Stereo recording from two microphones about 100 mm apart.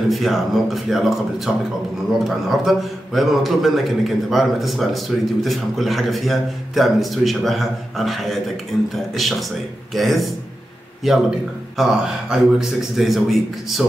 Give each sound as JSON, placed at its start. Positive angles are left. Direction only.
{"t": 0.1, "sound": "a man's voice", "side_deg": 0}